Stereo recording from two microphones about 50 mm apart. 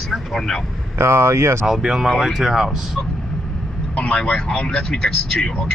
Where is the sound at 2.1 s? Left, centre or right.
Centre.